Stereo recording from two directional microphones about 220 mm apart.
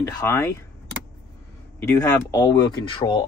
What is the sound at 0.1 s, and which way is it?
Speech, 15° left (ahead or behind).